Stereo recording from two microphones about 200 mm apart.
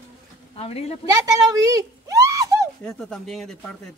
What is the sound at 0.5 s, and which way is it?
Speech, 30° left (ahead or behind).